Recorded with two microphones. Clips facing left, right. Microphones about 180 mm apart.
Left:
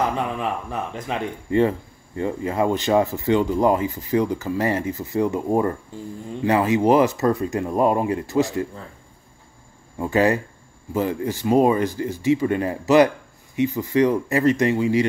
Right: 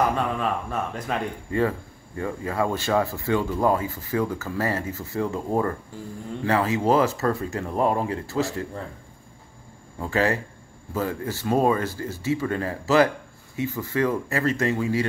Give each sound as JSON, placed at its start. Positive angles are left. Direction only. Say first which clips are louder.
{"t": 0.4, "sound": "speech", "louder": "even", "side_deg": 20}
{"t": 9.9, "sound": "speech", "louder": "left 5 dB", "side_deg": 20}